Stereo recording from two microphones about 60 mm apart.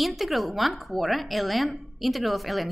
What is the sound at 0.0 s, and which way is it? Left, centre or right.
A woman's voice, centre.